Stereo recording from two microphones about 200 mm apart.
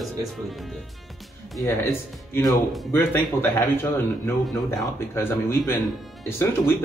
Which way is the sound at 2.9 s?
10° left (ahead or behind).